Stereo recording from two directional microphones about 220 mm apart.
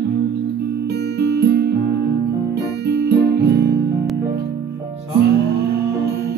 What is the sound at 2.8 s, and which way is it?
Music, 50° right (ahead or behind).